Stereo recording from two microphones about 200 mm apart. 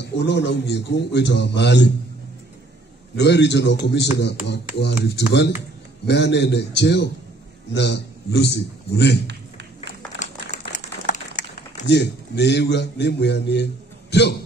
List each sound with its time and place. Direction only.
0.0 s a man's voice: 60° left (ahead or behind)
3.2 s a man's voice: 60° left (ahead or behind)
10.5 s crumpling: 35° left (ahead or behind)
11.8 s a man's voice: 60° left (ahead or behind)